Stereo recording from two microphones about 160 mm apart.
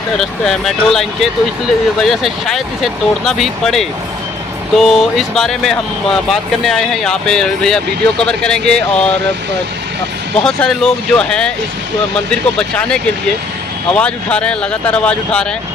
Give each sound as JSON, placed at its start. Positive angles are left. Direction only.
{"t": 0.2, "sound": "speech", "side_deg": 0}
{"t": 10.4, "sound": "speech", "side_deg": 5}